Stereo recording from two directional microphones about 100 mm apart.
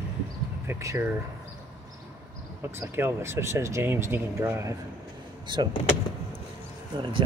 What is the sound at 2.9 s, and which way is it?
Speech, 25° right (ahead or behind).